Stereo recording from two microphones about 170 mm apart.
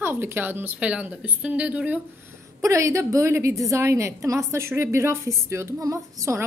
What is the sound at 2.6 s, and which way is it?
A woman's voice, 20° right (ahead or behind).